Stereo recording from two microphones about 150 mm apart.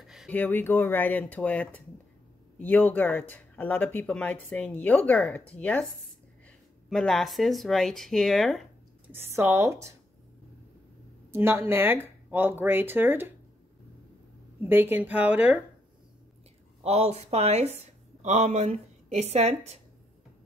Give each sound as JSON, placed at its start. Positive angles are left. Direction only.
{"t": 0.0, "sound": "a sound", "side_deg": 0}
{"t": 0.3, "sound": "speech", "side_deg": 10}
{"t": 6.9, "sound": "speech", "side_deg": 0}
{"t": 9.0, "sound": "speech", "side_deg": -15}
{"t": 11.3, "sound": "speech", "side_deg": -15}
{"t": 14.6, "sound": "speech", "side_deg": -15}
{"t": 16.8, "sound": "speech", "side_deg": -45}